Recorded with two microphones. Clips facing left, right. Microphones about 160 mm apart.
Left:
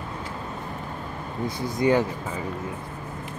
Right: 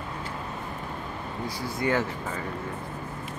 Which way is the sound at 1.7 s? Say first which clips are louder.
Left 5 dB; 20° left (ahead or behind).